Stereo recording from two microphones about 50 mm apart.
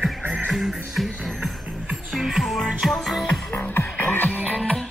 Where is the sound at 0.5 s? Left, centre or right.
Centre.